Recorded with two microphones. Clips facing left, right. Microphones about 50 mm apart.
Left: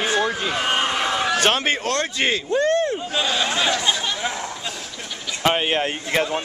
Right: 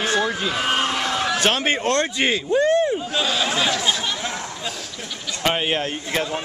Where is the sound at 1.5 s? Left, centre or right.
Centre.